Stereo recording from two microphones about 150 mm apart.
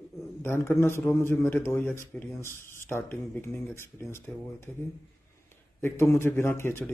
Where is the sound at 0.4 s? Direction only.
15° left (ahead or behind).